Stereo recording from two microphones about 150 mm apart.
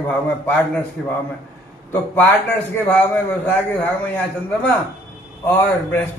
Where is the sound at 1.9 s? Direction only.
15° left (ahead or behind).